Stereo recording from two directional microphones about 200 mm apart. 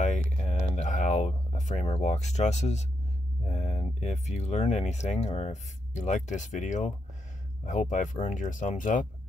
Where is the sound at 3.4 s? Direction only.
30° left (ahead or behind).